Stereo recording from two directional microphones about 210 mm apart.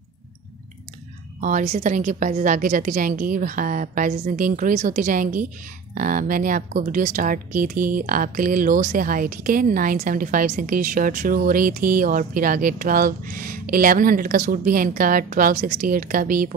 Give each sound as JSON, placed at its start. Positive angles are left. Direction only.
{"t": 1.4, "sound": "speech", "side_deg": -35}